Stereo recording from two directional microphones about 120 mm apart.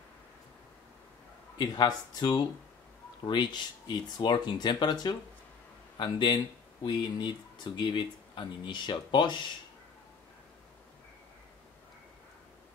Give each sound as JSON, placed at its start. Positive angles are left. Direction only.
{"t": 1.6, "sound": "speech", "side_deg": 40}
{"t": 5.9, "sound": "speech", "side_deg": 40}